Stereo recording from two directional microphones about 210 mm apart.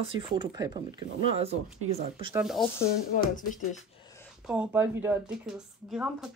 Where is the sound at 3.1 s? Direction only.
40° left (ahead or behind).